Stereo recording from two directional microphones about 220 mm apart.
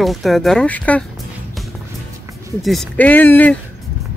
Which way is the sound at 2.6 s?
Centre (ahead or behind).